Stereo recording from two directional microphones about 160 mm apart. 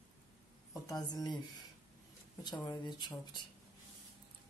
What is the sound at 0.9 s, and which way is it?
Speech, 25° left (ahead or behind).